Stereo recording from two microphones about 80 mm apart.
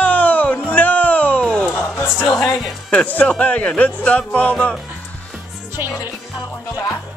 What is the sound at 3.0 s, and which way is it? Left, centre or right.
Speech, centre.